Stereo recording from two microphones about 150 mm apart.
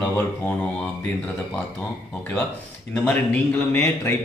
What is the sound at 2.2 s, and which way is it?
Speech, 15° left (ahead or behind).